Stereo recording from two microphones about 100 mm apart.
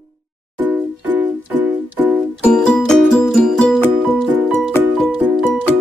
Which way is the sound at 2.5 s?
5° left (ahead or behind).